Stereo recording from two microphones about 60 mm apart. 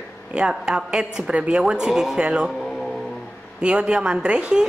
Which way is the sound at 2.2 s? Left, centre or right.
Centre.